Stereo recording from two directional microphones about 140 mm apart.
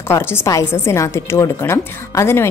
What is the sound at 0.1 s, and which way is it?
A woman's voice, 20° left (ahead or behind).